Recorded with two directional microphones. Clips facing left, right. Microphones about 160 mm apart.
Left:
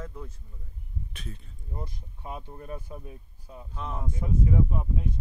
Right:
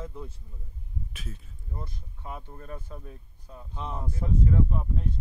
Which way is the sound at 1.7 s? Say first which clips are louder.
Left 2 dB; 20° left (ahead or behind).